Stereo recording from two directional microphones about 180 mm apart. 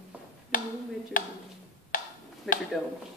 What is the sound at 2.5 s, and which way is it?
Speech, centre (ahead or behind).